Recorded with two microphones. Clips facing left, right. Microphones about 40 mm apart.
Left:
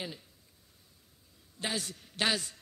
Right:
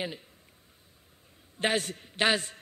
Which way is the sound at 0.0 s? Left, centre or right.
Right.